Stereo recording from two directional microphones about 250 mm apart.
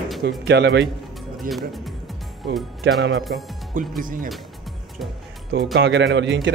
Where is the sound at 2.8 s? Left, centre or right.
Right.